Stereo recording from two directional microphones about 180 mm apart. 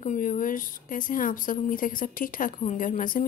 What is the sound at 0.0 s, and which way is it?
A woman's voice, 45° left (ahead or behind).